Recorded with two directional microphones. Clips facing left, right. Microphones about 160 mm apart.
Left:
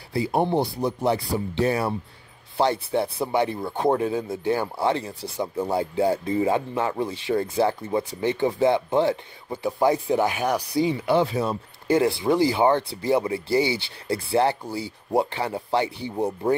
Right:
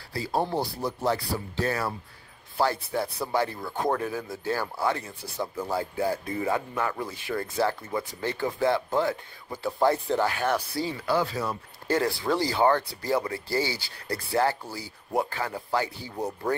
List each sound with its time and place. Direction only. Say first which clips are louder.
0.1 s speech: left 5 dB; 20° left (ahead or behind)